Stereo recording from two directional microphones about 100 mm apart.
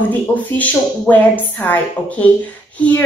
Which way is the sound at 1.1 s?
15° left (ahead or behind).